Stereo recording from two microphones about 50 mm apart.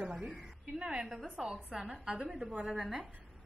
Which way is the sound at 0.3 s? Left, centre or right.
Centre.